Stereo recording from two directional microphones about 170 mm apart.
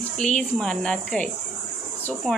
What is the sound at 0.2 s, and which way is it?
Speech, 5° left (ahead or behind).